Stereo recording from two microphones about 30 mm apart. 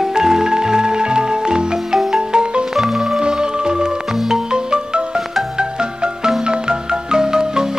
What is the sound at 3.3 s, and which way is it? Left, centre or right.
Music, right.